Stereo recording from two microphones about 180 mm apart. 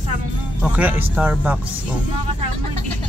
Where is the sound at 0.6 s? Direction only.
5° right (ahead or behind).